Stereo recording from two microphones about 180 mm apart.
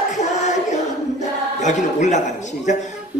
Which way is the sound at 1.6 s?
40° left (ahead or behind).